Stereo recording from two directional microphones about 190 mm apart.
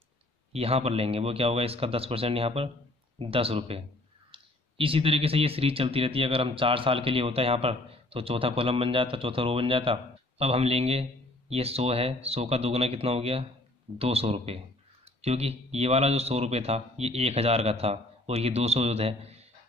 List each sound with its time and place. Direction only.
0.5 s speech: 30° right (ahead or behind)